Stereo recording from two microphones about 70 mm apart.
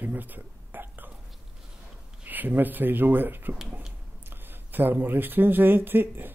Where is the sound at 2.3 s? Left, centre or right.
Right.